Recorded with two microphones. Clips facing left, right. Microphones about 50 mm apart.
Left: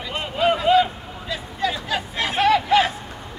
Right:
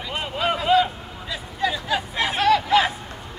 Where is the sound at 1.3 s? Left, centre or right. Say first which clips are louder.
Even; centre.